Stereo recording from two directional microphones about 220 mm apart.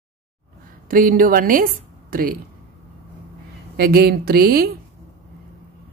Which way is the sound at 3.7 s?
45° right (ahead or behind).